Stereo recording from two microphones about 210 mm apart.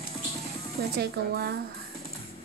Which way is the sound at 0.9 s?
50° right (ahead or behind).